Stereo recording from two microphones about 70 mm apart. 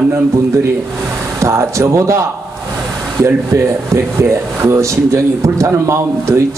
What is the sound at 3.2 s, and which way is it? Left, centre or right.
Speech, right.